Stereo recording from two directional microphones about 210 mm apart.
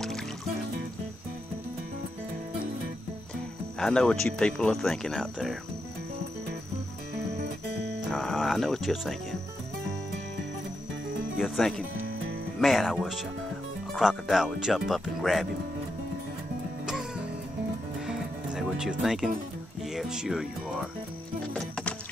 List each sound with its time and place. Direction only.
3.8 s speech: 5° left (ahead or behind)
8.1 s speech: centre (ahead or behind)
11.3 s speech: centre (ahead or behind)
18.0 s music: 5° right (ahead or behind)
19.9 s speech: centre (ahead or behind)
21.5 s music: 5° left (ahead or behind)